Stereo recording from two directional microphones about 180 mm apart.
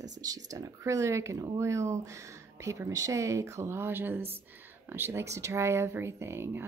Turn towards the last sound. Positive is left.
turn(degrees=-15)  # may be behind; listen again after turning